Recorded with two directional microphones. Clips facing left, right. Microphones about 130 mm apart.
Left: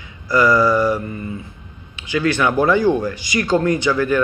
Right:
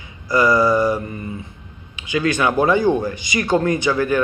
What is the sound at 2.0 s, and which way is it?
Speech, 20° right (ahead or behind).